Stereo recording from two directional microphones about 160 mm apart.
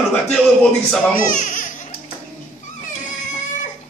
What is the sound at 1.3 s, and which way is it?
Baby cry, 55° left (ahead or behind).